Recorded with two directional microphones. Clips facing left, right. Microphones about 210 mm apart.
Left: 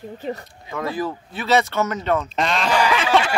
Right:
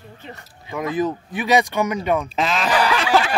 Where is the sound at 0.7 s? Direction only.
20° right (ahead or behind).